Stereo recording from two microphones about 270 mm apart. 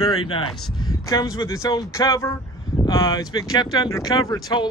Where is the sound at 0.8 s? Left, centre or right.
Centre.